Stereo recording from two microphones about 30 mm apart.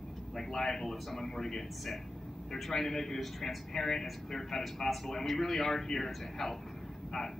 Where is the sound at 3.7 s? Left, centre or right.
Centre.